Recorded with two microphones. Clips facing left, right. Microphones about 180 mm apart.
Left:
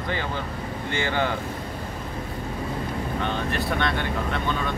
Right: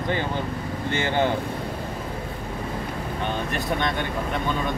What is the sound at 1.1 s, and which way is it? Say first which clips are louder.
Speech: right 3 dB; 20° right (ahead or behind).